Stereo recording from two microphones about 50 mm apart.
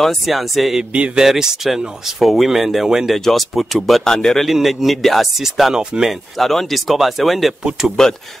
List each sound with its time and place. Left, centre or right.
0.0 s speech: centre
0.9 s speech: right
1.2 s speech: centre
4.0 s speech: centre
4.5 s speech: centre
5.7 s speech: centre
6.3 s speech: centre
8.0 s speech: centre